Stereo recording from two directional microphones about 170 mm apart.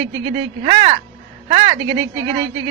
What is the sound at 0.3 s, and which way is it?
Speech, 30° right (ahead or behind).